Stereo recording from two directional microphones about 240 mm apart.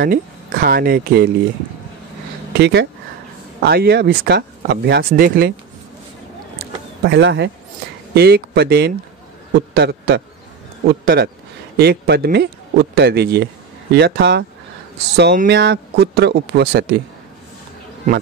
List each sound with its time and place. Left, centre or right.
0.0 s speech: right
2.6 s speech: right
7.0 s a man's voice: right